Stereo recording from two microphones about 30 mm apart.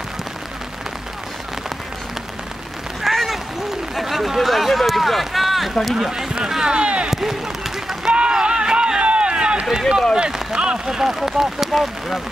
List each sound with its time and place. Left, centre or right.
3.0 s a sound: centre
4.4 s run: centre
5.9 s speech: centre
6.8 s speech: right
7.1 s speech: centre
8.1 s a sound: right
9.0 s run: right
10.1 s speech: right; by 11.9 s centre